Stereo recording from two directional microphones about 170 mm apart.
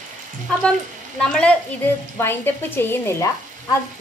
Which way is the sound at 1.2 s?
5° left (ahead or behind).